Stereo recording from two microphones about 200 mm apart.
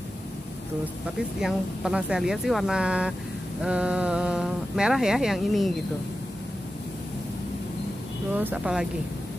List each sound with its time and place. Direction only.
1.4 s speech: 5° right (ahead or behind)
8.4 s speech: 5° right (ahead or behind)